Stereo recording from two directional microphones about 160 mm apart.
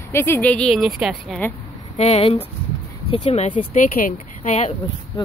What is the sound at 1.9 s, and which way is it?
Speech, 40° left (ahead or behind).